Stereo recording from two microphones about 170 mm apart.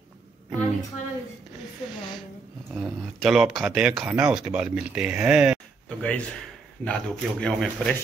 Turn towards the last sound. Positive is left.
turn(degrees=5)  # may be behind; listen again after turning